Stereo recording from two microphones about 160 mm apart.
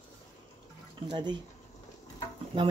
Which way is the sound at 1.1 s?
30° right (ahead or behind).